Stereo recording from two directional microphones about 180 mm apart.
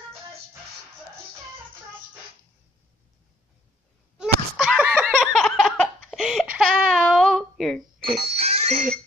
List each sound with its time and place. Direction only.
4.2 s laughter: centre (ahead or behind)
6.0 s a sound: centre (ahead or behind)
8.2 s music: 35° right (ahead or behind)